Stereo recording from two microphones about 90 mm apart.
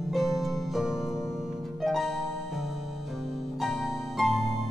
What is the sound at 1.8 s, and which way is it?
Harp, centre (ahead or behind).